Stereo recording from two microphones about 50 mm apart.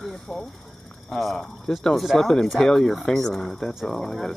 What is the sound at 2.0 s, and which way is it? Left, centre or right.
Speech, centre.